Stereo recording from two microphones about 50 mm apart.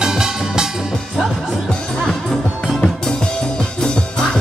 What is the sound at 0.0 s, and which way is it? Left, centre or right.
Music, centre.